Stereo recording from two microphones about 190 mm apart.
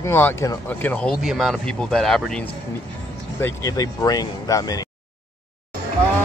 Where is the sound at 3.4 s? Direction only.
15° left (ahead or behind).